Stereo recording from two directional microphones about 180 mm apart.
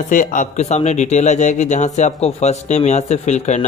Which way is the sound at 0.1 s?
45° left (ahead or behind).